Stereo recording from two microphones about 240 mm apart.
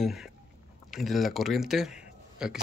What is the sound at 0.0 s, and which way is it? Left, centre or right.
Speech, centre.